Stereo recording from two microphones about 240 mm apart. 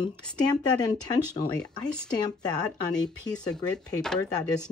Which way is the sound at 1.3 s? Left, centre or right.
Centre.